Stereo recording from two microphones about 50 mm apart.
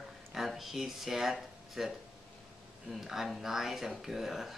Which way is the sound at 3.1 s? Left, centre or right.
Centre.